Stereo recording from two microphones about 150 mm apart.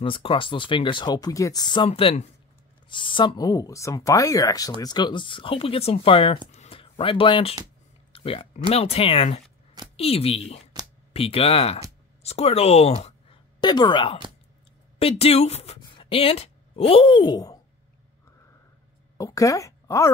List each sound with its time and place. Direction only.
0.0 s speech: 35° left (ahead or behind)
1.9 s a woman's voice: 40° left (ahead or behind)
13.6 s speech: 30° left (ahead or behind)
15.0 s a woman's voice: 40° left (ahead or behind)
19.1 s speech: 20° left (ahead or behind)